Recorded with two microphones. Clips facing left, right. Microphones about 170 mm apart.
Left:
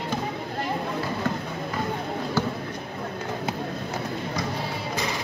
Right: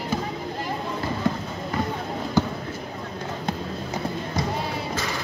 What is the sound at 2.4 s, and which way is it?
Basketball bounce, 15° right (ahead or behind).